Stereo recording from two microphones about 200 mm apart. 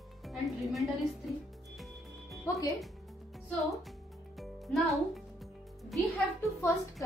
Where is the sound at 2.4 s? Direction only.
15° left (ahead or behind).